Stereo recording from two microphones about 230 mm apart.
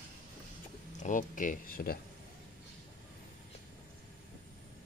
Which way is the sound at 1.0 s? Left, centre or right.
Left.